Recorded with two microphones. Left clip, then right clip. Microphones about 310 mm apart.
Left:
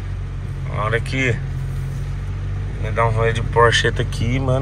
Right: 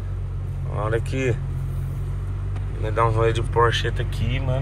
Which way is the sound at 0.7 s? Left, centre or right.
Centre.